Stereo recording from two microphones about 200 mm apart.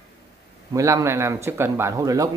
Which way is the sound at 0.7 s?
15° right (ahead or behind).